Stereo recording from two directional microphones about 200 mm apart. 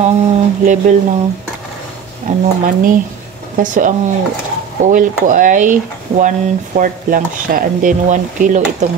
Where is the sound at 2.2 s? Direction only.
45° right (ahead or behind).